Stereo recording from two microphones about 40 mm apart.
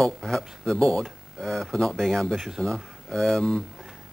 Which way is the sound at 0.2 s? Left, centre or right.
Centre.